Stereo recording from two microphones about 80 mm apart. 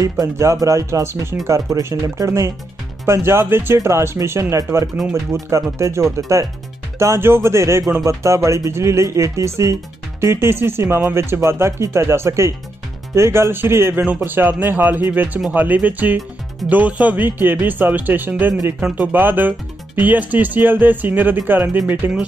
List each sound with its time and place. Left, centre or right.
0.4 s speech: right